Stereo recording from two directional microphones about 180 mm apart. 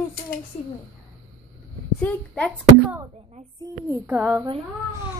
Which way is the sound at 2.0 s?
5° left (ahead or behind).